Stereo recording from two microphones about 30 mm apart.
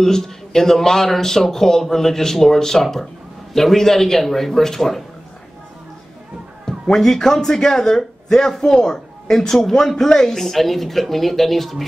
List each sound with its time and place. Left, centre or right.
0.0 s speech: centre
6.9 s speech: centre
10.4 s speech: centre